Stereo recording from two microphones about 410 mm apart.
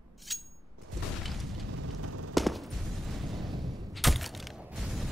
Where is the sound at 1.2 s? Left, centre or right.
Centre.